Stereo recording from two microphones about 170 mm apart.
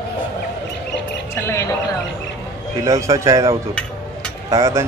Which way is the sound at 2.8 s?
20° right (ahead or behind).